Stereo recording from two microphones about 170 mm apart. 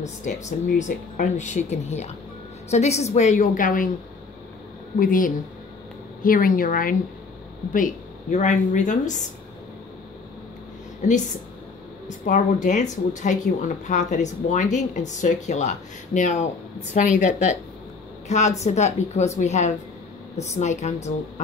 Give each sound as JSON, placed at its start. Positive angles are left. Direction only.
{"t": 0.0, "sound": "speech", "side_deg": 45}
{"t": 4.9, "sound": "a woman's voice", "side_deg": 55}
{"t": 11.0, "sound": "speech", "side_deg": 45}
{"t": 12.3, "sound": "a woman's voice", "side_deg": 45}